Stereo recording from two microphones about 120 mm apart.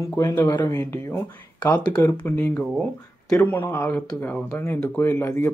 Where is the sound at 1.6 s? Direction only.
10° left (ahead or behind).